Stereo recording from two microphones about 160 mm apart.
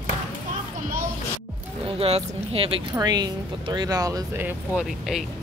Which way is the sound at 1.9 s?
40° right (ahead or behind).